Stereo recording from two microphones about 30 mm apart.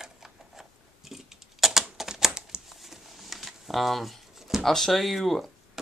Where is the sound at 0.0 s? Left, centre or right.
Centre.